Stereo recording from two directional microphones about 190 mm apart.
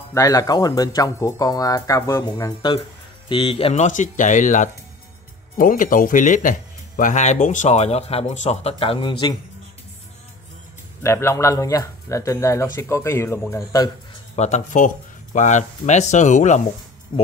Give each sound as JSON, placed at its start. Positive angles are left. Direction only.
{"t": 0.1, "sound": "speech", "side_deg": 20}
{"t": 11.0, "sound": "speech", "side_deg": 15}
{"t": 14.3, "sound": "speech", "side_deg": 35}
{"t": 17.1, "sound": "speech", "side_deg": 25}